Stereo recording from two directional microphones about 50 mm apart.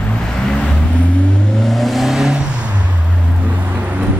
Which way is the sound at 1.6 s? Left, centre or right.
Centre.